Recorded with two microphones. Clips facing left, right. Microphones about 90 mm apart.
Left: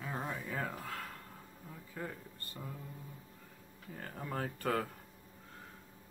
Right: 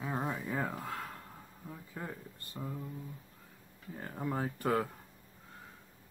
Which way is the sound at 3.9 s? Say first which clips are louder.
Right 4 dB; 15° right (ahead or behind).